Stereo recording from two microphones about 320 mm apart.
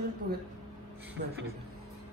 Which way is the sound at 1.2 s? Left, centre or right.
Right.